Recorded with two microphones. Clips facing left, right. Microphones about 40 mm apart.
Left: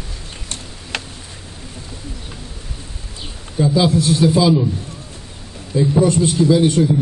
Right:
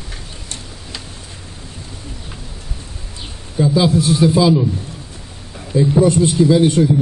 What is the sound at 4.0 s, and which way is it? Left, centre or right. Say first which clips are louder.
Speech: right 1 dB; centre.